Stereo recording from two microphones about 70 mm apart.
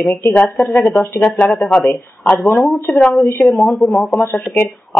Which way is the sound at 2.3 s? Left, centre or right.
Left.